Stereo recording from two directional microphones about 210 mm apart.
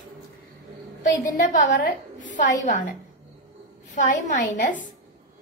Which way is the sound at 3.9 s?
35° left (ahead or behind).